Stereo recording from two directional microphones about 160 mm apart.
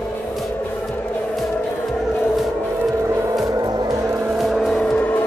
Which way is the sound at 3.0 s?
15° right (ahead or behind).